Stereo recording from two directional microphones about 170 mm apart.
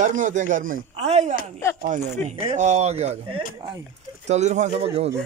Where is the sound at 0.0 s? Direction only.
50° right (ahead or behind).